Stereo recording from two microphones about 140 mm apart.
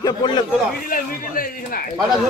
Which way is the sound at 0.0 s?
30° left (ahead or behind).